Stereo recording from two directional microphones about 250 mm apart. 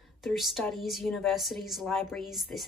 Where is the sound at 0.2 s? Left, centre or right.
Centre.